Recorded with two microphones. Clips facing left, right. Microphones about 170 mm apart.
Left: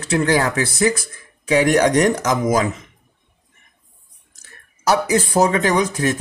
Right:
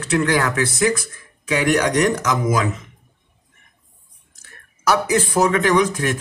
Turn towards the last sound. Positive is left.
turn(degrees=30)  # may be behind; listen again after turning